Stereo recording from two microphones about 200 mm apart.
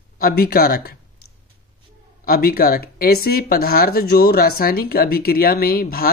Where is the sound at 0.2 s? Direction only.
50° left (ahead or behind).